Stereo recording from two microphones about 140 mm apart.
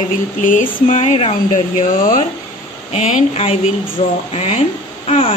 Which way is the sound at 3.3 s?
45° left (ahead or behind).